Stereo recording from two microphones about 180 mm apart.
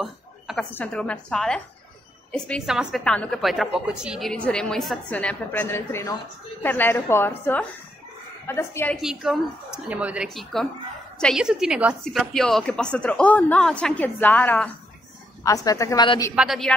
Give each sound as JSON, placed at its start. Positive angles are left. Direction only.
{"t": 0.0, "sound": "a sound", "side_deg": 0}
{"t": 0.7, "sound": "a woman's voice", "side_deg": 5}
{"t": 8.9, "sound": "a woman's voice", "side_deg": 0}
{"t": 16.3, "sound": "a woman's voice", "side_deg": 0}